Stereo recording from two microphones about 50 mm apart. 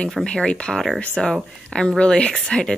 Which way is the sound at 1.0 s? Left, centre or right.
Centre.